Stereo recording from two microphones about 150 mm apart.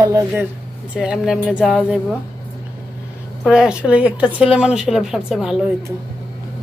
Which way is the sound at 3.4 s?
5° right (ahead or behind).